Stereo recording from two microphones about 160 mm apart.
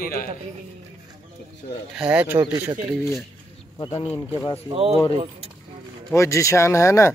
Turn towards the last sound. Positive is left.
turn(degrees=15)  # may be behind; listen again after turning